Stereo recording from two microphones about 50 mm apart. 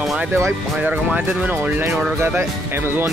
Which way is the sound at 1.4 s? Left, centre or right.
Right.